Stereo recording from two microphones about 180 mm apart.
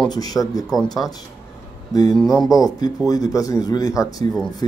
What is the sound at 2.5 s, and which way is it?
Speech, 20° left (ahead or behind).